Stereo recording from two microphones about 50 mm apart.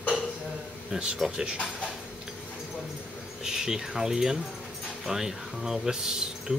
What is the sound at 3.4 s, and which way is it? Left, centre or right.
Speech, centre.